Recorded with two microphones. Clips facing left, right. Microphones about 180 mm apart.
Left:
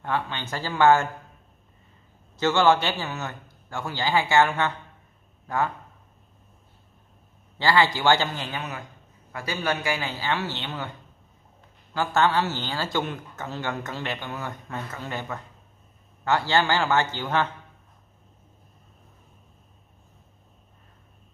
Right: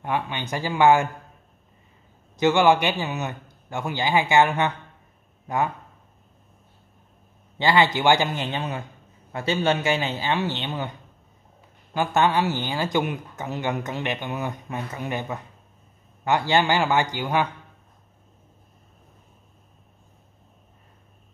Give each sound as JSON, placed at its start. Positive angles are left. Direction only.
{"t": 0.0, "sound": "speech", "side_deg": -15}
{"t": 2.3, "sound": "speech", "side_deg": -15}
{"t": 7.5, "sound": "speech", "side_deg": -20}
{"t": 11.9, "sound": "speech", "side_deg": -15}